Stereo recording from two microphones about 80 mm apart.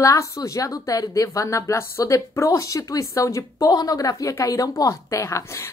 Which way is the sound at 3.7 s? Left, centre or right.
Left.